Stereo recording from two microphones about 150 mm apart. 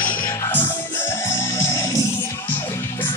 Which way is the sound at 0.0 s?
65° left (ahead or behind).